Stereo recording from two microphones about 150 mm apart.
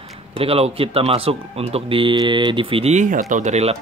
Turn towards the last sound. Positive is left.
turn(degrees=-50)  # may be behind; listen again after turning